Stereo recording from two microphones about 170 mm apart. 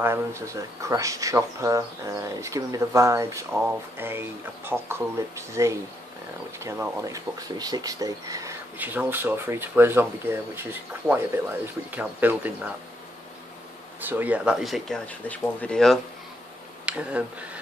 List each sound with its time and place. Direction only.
0.0 s speech: 15° right (ahead or behind)
14.0 s speech: 10° right (ahead or behind)
16.8 s speech: 10° right (ahead or behind)